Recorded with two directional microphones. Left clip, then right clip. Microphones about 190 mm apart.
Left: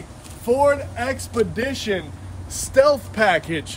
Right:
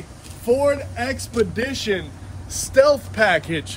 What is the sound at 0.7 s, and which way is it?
Speech, 50° left (ahead or behind).